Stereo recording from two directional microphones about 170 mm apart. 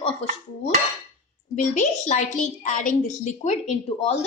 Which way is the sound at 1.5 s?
45° left (ahead or behind).